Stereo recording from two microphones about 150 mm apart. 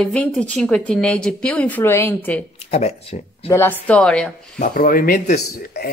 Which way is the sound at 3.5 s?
15° left (ahead or behind).